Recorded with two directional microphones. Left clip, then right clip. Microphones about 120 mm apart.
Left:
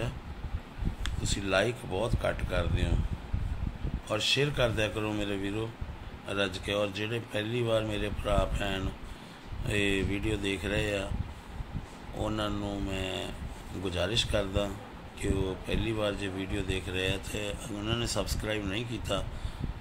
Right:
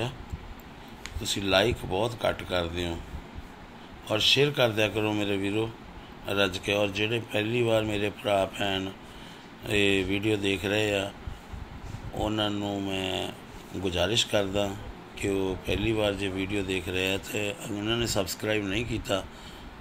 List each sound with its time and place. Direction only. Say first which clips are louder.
1.2 s speech: right 4 dB; 25° right (ahead or behind)
4.1 s speech: right 5 dB; 20° right (ahead or behind)
12.2 s speech: right 4 dB; 20° right (ahead or behind)